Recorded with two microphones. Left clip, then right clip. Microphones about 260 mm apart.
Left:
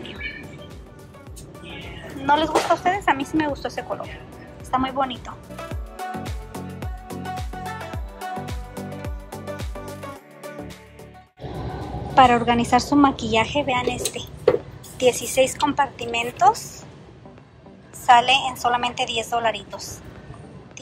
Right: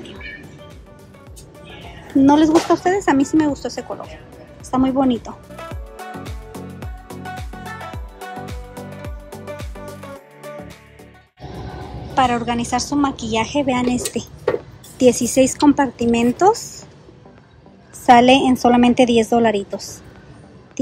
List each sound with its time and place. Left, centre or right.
2.2 s a woman's voice: right
5.5 s music: centre
12.1 s a woman's voice: centre
18.0 s a woman's voice: right